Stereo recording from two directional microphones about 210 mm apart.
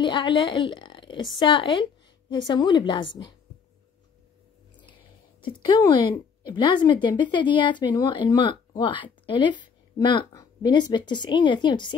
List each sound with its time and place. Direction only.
0.0 s a woman's voice: 20° left (ahead or behind)
5.4 s a woman's voice: 20° left (ahead or behind)